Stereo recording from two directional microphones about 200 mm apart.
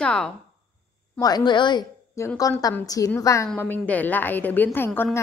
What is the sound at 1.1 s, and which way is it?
A woman's voice, 20° left (ahead or behind).